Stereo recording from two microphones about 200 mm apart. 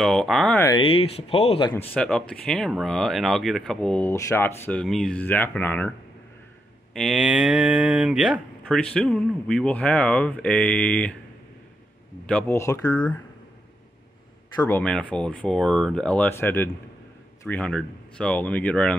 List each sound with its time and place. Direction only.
0.0 s speech: centre (ahead or behind)
0.7 s speech: 25° left (ahead or behind)
2.0 s speech: 5° left (ahead or behind)
12.3 s speech: 10° left (ahead or behind)
14.5 s speech: 20° left (ahead or behind)
14.8 s speech: 5° left (ahead or behind)